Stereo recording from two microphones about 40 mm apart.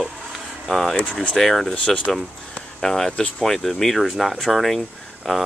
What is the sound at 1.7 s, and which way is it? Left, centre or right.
Speech, left.